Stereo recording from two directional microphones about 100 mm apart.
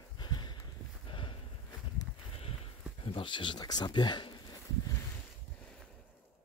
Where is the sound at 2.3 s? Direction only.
75° left (ahead or behind); by 4.5 s 50° left (ahead or behind).